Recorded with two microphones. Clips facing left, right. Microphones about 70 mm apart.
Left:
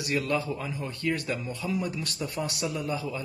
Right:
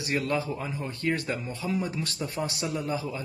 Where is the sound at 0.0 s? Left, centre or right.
Right.